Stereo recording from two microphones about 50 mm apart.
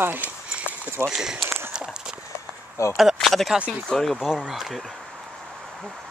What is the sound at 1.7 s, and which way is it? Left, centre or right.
Run, centre.